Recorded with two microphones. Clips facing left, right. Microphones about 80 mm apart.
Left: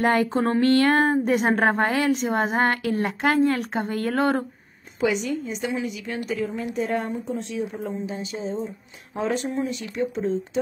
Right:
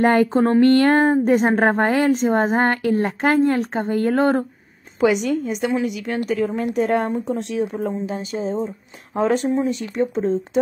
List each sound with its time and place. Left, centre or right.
0.0 s speech: right
5.1 s a woman's voice: right
8.1 s speech: right